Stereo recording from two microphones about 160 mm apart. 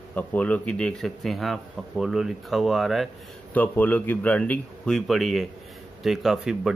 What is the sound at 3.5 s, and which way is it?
Speech, 10° left (ahead or behind).